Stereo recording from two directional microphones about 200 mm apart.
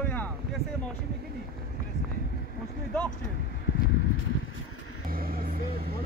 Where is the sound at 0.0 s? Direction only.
10° left (ahead or behind).